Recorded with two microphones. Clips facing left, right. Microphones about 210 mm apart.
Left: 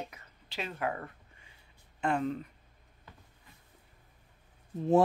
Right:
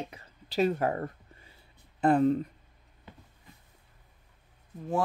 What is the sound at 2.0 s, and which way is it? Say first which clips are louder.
Speech: right 8 dB; 40° right (ahead or behind).